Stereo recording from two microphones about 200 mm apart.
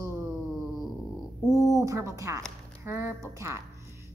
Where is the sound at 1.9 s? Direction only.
15° right (ahead or behind).